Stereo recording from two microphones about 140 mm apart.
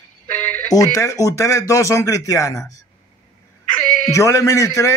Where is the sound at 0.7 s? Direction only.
25° left (ahead or behind).